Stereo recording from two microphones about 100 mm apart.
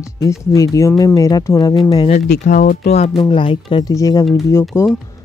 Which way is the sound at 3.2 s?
55° left (ahead or behind).